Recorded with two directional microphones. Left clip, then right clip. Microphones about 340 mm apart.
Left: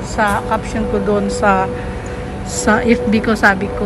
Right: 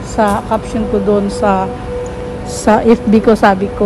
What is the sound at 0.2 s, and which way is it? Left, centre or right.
A woman's voice, centre.